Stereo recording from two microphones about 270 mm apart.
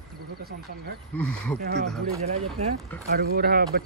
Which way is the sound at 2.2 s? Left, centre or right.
Right.